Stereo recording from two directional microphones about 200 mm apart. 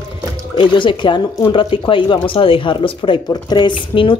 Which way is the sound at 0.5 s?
25° left (ahead or behind).